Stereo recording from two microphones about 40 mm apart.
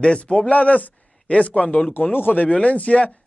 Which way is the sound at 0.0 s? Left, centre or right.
Left.